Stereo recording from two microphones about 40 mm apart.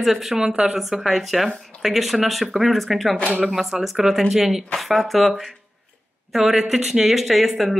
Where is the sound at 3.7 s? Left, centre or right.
Centre.